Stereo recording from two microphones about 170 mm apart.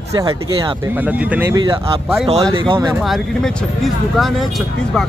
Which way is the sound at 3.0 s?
Centre (ahead or behind).